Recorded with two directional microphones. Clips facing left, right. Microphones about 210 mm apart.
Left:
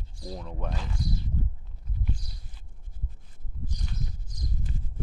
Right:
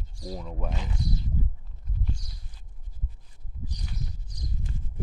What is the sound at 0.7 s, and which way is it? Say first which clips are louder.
Speech: right 1 dB; 20° right (ahead or behind).